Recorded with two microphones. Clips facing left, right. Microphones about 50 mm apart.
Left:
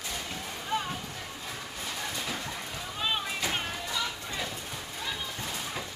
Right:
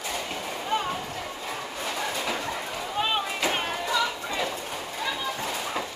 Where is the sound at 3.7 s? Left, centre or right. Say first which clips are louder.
Right 7 dB; right.